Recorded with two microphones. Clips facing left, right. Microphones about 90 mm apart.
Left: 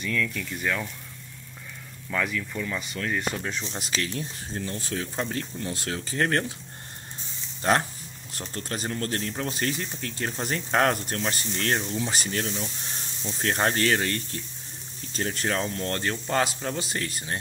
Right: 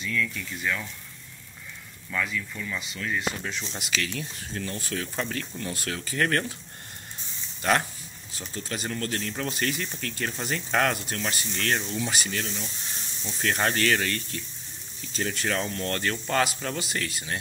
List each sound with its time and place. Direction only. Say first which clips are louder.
0.0 s speech: left 1 dB; 75° left (ahead or behind)
0.6 s speech: left 1 dB; 45° left (ahead or behind)
2.0 s speech: left 2 dB; 50° left (ahead or behind); by 6.4 s 25° left (ahead or behind)
7.6 s speech: left 1 dB; 30° left (ahead or behind)
8.3 s speech: left 2 dB; 60° left (ahead or behind)
8.6 s speech: left 1 dB; 35° left (ahead or behind)
10.4 s speech: left 2 dB; 40° left (ahead or behind)
11.8 s speech: left 1 dB; 20° left (ahead or behind)
12.1 s speech: left 2 dB; 40° left (ahead or behind)